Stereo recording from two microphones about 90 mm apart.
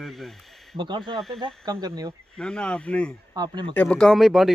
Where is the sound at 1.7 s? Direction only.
45° right (ahead or behind).